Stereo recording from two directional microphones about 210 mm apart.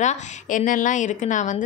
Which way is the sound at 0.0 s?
35° left (ahead or behind).